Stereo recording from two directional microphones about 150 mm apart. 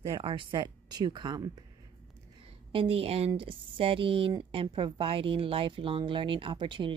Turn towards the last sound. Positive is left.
turn(degrees=-35)  # may be behind; listen again after turning